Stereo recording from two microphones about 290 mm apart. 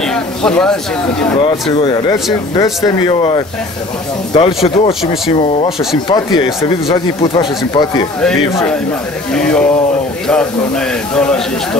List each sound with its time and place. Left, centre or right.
0.0 s speech: centre
1.4 s speech: centre
9.3 s speech: centre
11.1 s speech: centre